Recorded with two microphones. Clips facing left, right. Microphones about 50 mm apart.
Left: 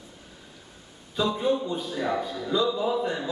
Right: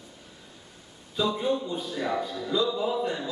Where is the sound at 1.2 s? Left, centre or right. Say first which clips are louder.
Left 1 dB; centre.